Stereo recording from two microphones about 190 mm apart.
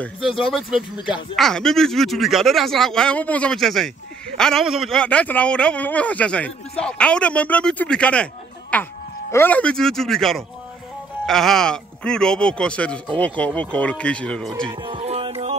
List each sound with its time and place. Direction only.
0.4 s speech: centre (ahead or behind)
14.7 s music: 25° right (ahead or behind)